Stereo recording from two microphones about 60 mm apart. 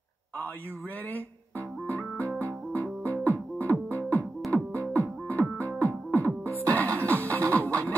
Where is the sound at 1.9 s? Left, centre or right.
Left.